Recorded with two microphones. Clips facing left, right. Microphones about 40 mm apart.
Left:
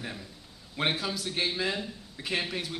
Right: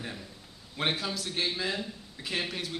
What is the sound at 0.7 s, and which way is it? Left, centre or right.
A man's voice, centre.